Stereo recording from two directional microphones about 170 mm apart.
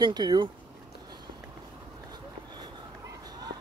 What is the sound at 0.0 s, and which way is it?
Speech, 25° right (ahead or behind).